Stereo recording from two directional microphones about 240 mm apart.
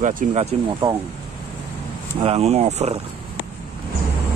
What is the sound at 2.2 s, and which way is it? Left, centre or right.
Speech, right.